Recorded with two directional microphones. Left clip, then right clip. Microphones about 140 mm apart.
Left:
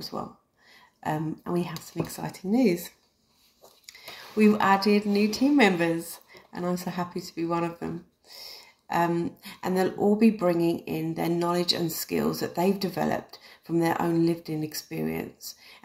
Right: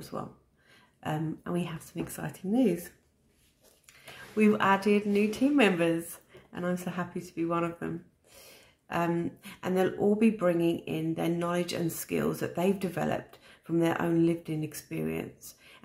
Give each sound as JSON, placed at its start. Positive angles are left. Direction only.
{"t": 0.1, "sound": "speech", "side_deg": -25}
{"t": 4.4, "sound": "speech", "side_deg": -20}